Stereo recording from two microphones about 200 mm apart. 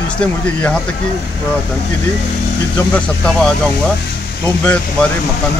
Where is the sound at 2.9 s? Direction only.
5° left (ahead or behind).